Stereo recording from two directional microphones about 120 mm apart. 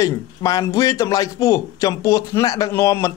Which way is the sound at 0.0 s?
30° left (ahead or behind).